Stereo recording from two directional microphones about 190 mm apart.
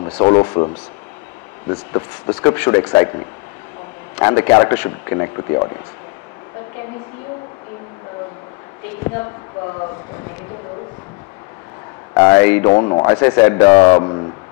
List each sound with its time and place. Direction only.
0.2 s speech: 20° left (ahead or behind)
1.7 s speech: 30° left (ahead or behind)
2.4 s a man's voice: 15° left (ahead or behind)
4.2 s a man's voice: 15° left (ahead or behind)
12.1 s a man's voice: 15° left (ahead or behind)
12.7 s speech: 30° left (ahead or behind)
13.0 s a man's voice: 20° left (ahead or behind)